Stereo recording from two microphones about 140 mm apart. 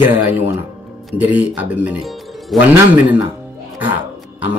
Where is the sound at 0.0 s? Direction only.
15° right (ahead or behind).